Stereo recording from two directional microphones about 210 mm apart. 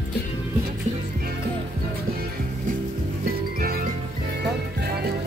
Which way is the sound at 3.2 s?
45° right (ahead or behind).